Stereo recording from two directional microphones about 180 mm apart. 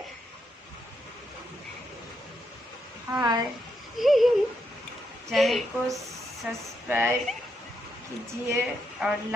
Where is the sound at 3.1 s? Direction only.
20° right (ahead or behind).